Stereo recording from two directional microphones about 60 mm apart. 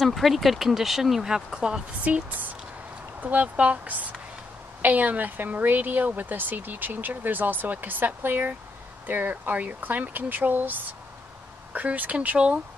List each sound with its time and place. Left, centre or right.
0.0 s speech: centre
2.1 s a woman's voice: right